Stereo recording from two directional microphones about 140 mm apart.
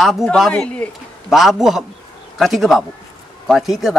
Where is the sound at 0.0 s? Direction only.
Centre (ahead or behind).